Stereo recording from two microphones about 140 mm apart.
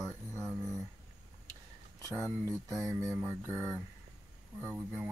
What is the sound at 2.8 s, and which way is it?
Mantra, 20° right (ahead or behind).